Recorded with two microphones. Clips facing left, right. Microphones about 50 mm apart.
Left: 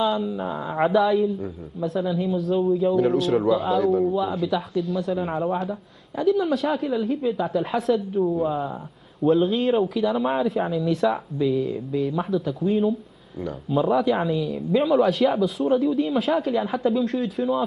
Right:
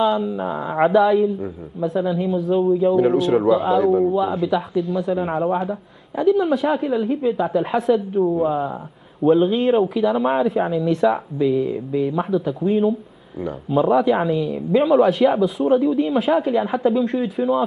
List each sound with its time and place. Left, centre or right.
0.0 s a man's voice: centre